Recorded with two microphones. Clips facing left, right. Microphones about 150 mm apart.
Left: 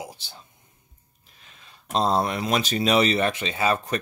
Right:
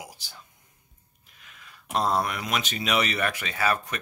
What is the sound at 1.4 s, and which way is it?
Speech, 30° left (ahead or behind).